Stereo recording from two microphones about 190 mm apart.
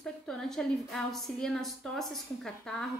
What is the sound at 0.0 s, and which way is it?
A woman's voice, centre (ahead or behind).